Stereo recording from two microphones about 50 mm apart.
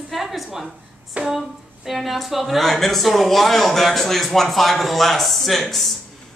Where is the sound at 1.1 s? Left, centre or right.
Right.